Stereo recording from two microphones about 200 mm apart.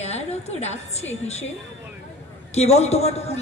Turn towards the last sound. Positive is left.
turn(degrees=30)  # may be behind; listen again after turning